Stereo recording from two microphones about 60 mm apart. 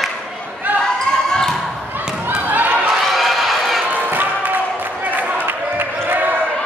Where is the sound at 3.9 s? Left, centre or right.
Right.